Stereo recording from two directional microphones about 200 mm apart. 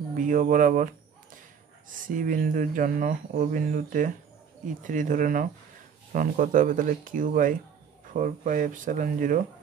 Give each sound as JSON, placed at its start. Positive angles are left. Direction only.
{"t": 0.2, "sound": "speech", "side_deg": -40}
{"t": 2.0, "sound": "speech", "side_deg": -40}